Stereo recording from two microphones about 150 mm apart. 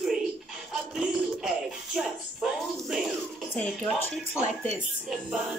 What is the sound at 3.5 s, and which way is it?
Speech, 15° left (ahead or behind).